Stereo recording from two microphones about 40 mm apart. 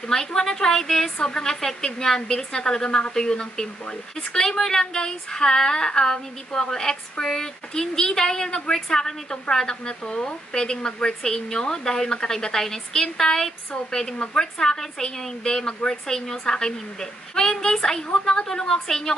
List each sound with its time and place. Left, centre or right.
0.1 s a woman's voice: centre